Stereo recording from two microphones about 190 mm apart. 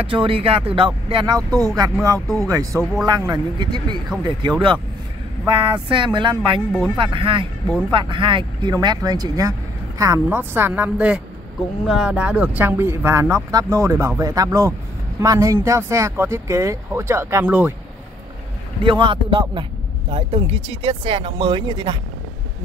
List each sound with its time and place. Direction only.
0.1 s speech: 30° right (ahead or behind)
2.1 s speech: centre (ahead or behind)
2.4 s speech: 15° right (ahead or behind)
2.8 s speech: centre (ahead or behind)
3.1 s speech: 20° right (ahead or behind)
18.8 s speech: 25° right (ahead or behind)